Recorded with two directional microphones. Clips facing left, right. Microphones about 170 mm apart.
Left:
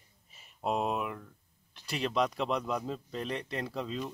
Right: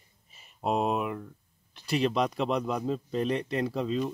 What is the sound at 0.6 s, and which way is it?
Speech, 25° right (ahead or behind).